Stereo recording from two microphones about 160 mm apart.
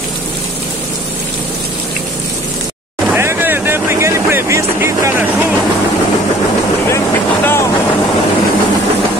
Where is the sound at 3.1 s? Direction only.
15° right (ahead or behind).